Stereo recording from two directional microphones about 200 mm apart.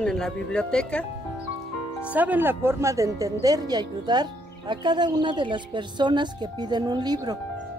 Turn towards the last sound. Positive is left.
turn(degrees=-20)  # may be behind; listen again after turning